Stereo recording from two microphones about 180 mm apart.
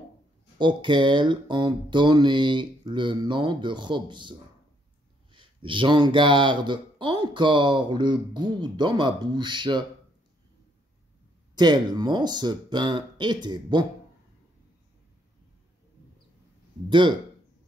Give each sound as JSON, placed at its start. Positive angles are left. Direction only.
{"t": 0.6, "sound": "speech", "side_deg": -25}
{"t": 11.5, "sound": "speech", "side_deg": -25}